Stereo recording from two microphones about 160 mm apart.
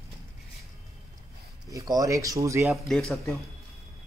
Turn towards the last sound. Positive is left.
turn(degrees=0)  # may be behind; listen again after turning